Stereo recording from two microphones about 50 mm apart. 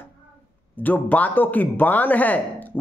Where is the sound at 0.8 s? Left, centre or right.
Left.